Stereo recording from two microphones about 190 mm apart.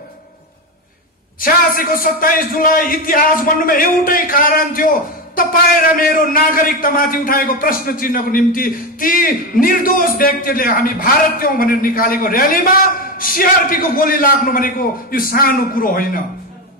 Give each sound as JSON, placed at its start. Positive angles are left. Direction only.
{"t": 1.4, "sound": "a man's voice", "side_deg": 50}